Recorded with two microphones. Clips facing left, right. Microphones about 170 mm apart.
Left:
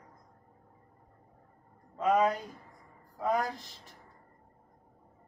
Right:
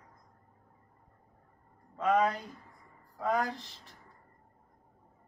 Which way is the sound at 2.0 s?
10° left (ahead or behind).